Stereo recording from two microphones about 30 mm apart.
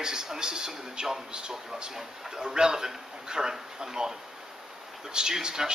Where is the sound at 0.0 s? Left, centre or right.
Right.